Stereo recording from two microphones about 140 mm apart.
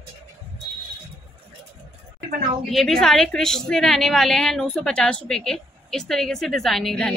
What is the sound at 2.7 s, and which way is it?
A woman's voice, centre (ahead or behind).